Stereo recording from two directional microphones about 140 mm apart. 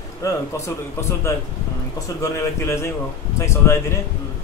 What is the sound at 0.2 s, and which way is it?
A man's voice, 25° left (ahead or behind).